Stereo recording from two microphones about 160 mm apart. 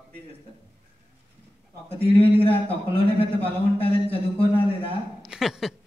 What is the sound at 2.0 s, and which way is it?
A man's voice, 35° left (ahead or behind).